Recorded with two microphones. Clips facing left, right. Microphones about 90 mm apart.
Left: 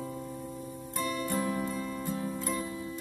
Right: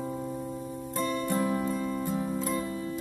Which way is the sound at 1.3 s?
15° right (ahead or behind).